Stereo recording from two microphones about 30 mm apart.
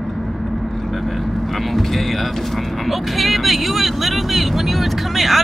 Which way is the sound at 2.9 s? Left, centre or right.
Centre.